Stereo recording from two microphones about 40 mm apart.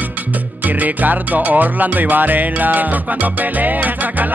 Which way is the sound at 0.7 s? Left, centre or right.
Right.